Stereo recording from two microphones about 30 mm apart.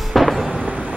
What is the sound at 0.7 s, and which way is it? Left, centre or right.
Vehicle, right.